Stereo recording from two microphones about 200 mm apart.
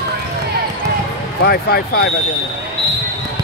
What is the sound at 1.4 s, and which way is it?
Speech, 55° left (ahead or behind).